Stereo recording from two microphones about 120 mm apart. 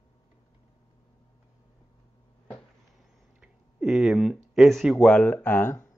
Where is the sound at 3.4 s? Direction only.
5° right (ahead or behind).